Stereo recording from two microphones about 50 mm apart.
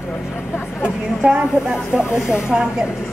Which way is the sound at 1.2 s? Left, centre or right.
Centre.